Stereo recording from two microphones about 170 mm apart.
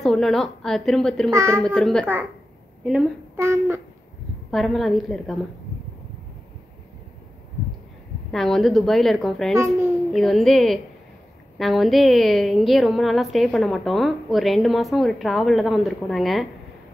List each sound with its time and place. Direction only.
0.0 s a woman's voice: centre (ahead or behind)
1.3 s speech: 15° right (ahead or behind)
1.6 s a woman's voice: 5° left (ahead or behind)
3.3 s speech: 15° right (ahead or behind)
4.5 s a woman's voice: centre (ahead or behind)
8.3 s a woman's voice: centre (ahead or behind)
9.6 s speech: 15° right (ahead or behind)
10.1 s a woman's voice: centre (ahead or behind)